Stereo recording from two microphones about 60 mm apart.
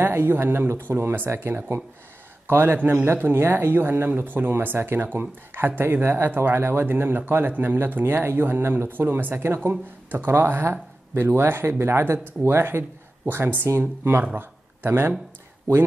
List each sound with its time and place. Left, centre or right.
0.0 s a man's voice: right